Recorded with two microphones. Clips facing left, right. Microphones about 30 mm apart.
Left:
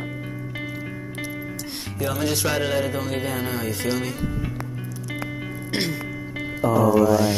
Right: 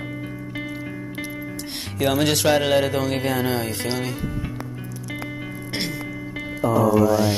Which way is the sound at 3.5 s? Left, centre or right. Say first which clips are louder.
Even; right.